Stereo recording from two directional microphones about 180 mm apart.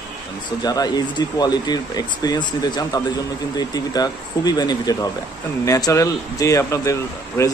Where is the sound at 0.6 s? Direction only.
20° left (ahead or behind).